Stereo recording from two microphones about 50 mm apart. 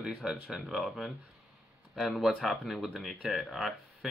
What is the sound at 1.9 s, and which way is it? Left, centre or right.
Speech, centre.